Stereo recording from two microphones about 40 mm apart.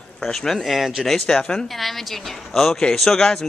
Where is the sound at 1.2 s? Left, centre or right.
Centre.